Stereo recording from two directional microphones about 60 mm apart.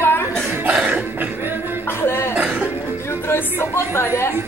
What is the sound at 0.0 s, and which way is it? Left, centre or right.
Cough, left.